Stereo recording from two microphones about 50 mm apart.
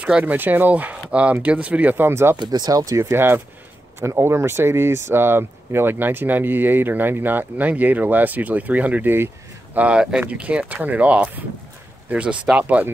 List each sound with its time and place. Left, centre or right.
0.2 s speech: right
2.0 s speech: right
2.7 s speech: right
3.1 s speech: right
4.0 s speech: right